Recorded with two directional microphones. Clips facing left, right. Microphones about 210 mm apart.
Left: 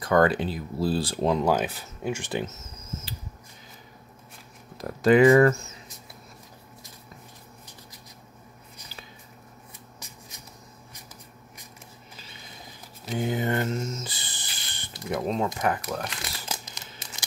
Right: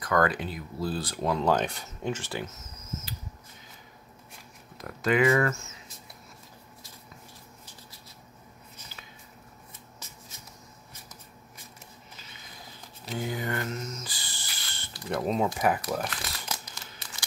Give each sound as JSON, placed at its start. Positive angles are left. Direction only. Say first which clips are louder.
{"t": 0.0, "sound": "speech", "louder": "left 5 dB", "side_deg": 30}
{"t": 1.4, "sound": "speech", "louder": "left 1 dB", "side_deg": 5}
{"t": 4.7, "sound": "speech", "louder": "left 7 dB", "side_deg": 35}
{"t": 8.8, "sound": "squish", "louder": "left 2 dB", "side_deg": 15}
{"t": 9.9, "sound": "shuffle", "louder": "left 2 dB", "side_deg": 15}
{"t": 13.1, "sound": "a sound", "louder": "left 5 dB", "side_deg": 20}
{"t": 15.0, "sound": "speech", "louder": "even", "side_deg": 0}
{"t": 16.3, "sound": "crumpling", "louder": "left 1 dB", "side_deg": 25}